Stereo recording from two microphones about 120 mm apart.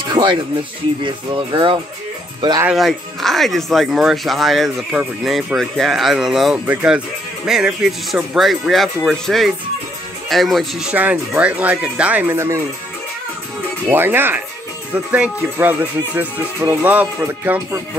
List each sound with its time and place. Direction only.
0.1 s music: 40° right (ahead or behind)
2.7 s speech: centre (ahead or behind); by 12.6 s 25° right (ahead or behind)
13.8 s speech: 20° right (ahead or behind)